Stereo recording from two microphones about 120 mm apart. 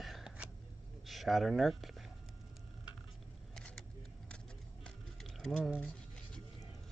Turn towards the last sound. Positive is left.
turn(degrees=5)  # may be behind; listen again after turning